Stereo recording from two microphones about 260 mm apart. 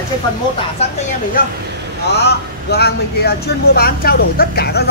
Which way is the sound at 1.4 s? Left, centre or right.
Left.